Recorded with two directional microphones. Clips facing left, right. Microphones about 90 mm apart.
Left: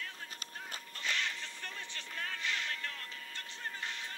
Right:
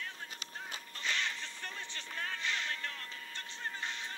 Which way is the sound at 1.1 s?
25° right (ahead or behind).